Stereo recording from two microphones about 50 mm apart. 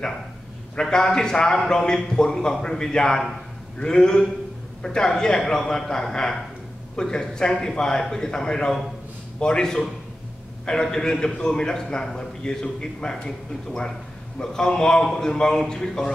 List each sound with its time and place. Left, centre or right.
0.7 s a man's voice: centre